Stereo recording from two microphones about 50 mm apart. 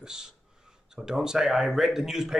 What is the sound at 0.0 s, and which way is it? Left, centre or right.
Speech, centre.